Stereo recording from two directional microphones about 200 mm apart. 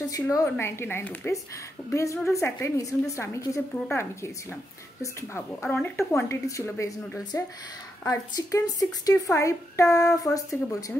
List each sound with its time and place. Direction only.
0.0 s speech: 15° left (ahead or behind)